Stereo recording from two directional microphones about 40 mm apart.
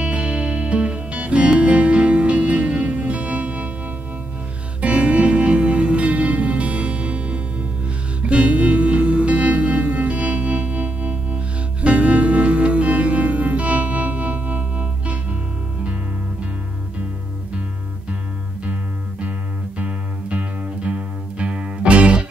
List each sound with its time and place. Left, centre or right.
0.0 s music: right
4.8 s music: right
19.8 s music: right